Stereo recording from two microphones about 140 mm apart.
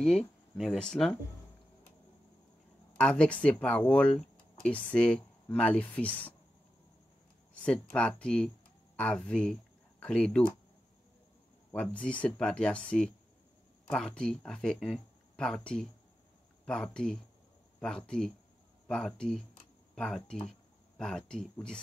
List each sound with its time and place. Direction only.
0.0 s speech: centre (ahead or behind)
3.0 s speech: 5° left (ahead or behind)
7.5 s speech: 10° left (ahead or behind)
11.7 s speech: 10° left (ahead or behind)